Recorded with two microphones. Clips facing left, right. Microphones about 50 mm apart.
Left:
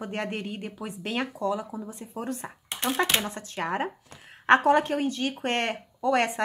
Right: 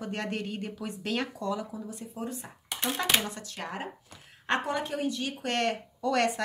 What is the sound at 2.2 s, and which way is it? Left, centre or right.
Speech, left.